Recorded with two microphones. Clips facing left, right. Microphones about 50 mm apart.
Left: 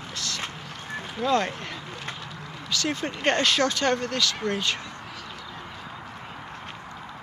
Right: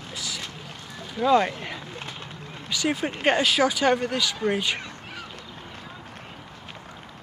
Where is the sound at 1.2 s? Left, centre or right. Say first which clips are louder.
Right 4 dB; centre.